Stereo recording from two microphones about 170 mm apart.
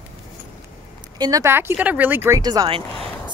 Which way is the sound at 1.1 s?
20° right (ahead or behind).